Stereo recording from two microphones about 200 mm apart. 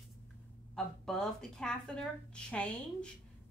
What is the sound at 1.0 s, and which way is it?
A woman's voice, centre (ahead or behind).